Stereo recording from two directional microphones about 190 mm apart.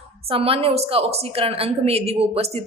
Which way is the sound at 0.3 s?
30° right (ahead or behind).